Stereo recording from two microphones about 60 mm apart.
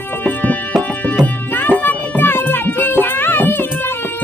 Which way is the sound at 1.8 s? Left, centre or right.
Left.